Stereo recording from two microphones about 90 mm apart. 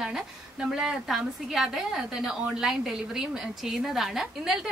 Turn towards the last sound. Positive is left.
turn(degrees=-5)  # may be behind; listen again after turning